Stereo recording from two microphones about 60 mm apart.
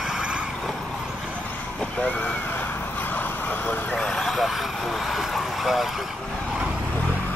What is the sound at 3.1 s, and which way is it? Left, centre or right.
Vehicle, left.